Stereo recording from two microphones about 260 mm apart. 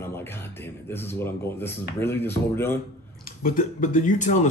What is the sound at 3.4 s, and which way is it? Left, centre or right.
Speech, left.